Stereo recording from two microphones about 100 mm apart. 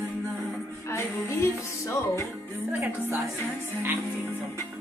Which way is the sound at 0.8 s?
30° left (ahead or behind).